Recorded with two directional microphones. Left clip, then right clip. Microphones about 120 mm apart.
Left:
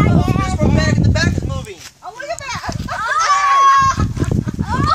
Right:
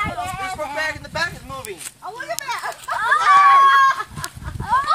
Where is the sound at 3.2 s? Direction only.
45° left (ahead or behind).